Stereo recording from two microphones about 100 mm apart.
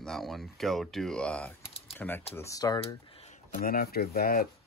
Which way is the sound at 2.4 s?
40° left (ahead or behind).